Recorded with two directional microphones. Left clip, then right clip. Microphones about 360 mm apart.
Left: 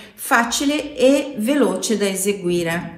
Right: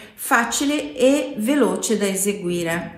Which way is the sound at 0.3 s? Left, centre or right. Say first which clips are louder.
Left 1 dB; centre.